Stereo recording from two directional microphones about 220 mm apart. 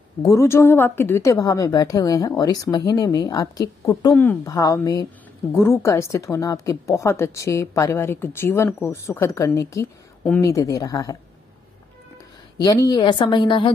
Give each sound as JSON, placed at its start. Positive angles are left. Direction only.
{"t": 0.2, "sound": "speech", "side_deg": 15}
{"t": 12.6, "sound": "a woman's voice", "side_deg": 15}